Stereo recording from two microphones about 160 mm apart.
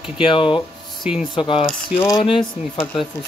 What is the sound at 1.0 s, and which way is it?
Speech, 5° right (ahead or behind).